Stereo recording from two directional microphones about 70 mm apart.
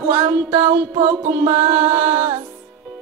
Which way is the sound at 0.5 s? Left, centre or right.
Right.